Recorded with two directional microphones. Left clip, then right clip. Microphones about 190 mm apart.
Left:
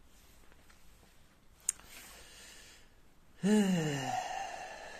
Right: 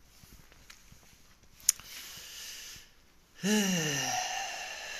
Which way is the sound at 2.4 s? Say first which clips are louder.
Right 10 dB; 25° left (ahead or behind).